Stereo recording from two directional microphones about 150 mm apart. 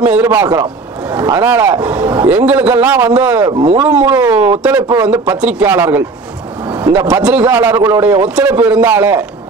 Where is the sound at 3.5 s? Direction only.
45° right (ahead or behind).